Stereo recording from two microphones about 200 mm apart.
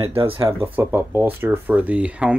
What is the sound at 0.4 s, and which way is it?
Speech, 15° right (ahead or behind).